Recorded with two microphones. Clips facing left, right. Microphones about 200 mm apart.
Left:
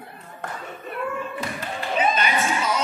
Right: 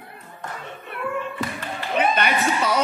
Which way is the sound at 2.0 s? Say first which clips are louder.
Right 2 dB; 60° right (ahead or behind).